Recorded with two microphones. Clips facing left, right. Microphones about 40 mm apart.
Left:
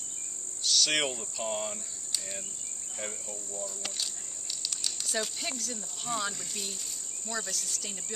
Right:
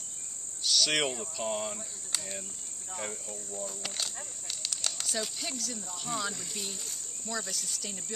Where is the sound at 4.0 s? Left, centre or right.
Right.